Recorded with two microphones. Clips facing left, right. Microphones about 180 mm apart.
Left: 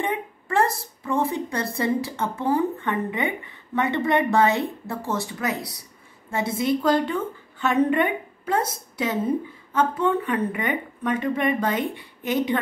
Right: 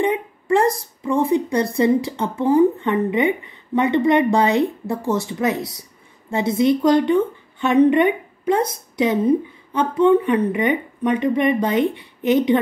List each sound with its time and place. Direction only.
0.0 s a woman's voice: 15° right (ahead or behind)